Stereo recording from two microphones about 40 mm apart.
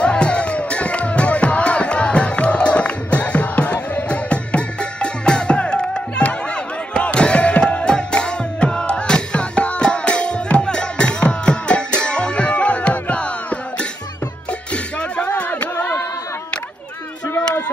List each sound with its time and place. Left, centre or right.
0.0 s music: left